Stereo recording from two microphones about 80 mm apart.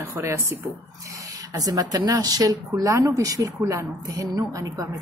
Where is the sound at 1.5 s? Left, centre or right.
Right.